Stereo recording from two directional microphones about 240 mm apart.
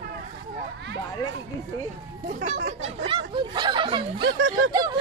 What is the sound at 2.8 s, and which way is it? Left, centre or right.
Speech, right.